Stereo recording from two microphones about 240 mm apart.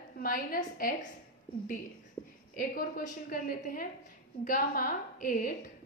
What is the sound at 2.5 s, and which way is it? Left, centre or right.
A woman's voice, left.